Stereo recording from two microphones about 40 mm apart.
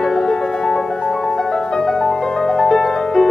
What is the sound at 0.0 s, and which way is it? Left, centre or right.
Music, centre.